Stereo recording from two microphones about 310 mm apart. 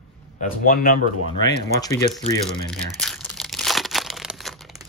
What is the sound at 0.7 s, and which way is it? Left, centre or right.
Speech, left.